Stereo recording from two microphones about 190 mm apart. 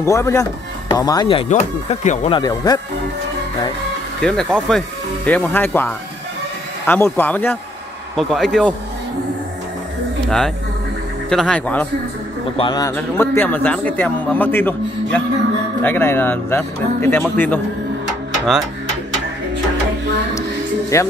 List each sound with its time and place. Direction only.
0.0 s speech: 15° left (ahead or behind)
1.5 s speech: 40° left (ahead or behind); by 2.8 s 20° left (ahead or behind)
4.2 s a man's voice: 5° left (ahead or behind)
10.2 s speech: centre (ahead or behind)
12.5 s speech: 20° left (ahead or behind)
12.9 s a man's voice: 10° left (ahead or behind)
20.9 s a man's voice: 15° left (ahead or behind)